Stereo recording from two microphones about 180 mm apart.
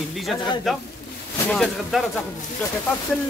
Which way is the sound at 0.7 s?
Centre (ahead or behind).